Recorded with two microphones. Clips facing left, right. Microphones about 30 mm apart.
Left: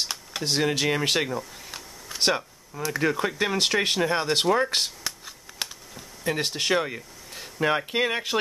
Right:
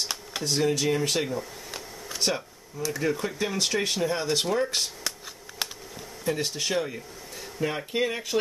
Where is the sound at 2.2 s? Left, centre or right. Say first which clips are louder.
Left 4 dB; left.